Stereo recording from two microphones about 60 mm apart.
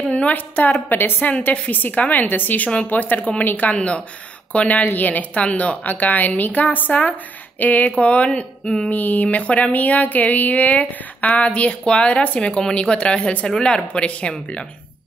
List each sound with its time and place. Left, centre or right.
0.1 s a woman's voice: left
8.9 s speech: left